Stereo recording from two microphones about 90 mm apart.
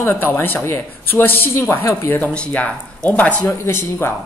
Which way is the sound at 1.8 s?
35° left (ahead or behind).